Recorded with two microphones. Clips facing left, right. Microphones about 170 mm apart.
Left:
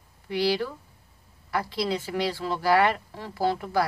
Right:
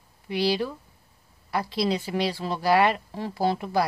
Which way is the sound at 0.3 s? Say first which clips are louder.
Even; 15° right (ahead or behind).